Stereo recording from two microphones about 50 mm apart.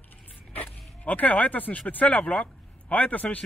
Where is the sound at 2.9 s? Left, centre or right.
Left.